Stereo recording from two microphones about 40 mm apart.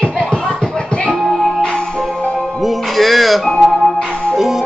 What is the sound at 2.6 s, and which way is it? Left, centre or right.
Music, centre.